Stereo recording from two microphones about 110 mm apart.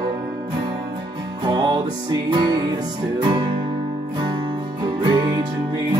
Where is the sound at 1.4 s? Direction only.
40° right (ahead or behind).